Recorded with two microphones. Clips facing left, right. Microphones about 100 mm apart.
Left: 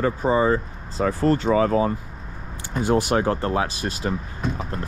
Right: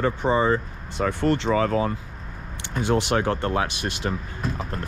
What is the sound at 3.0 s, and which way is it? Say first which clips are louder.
Speech: left 2 dB; 35° left (ahead or behind).